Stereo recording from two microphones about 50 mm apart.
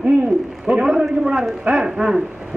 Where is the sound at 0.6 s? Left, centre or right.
Right.